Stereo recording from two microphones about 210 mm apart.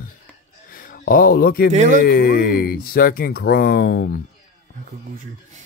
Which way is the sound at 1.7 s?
35° right (ahead or behind).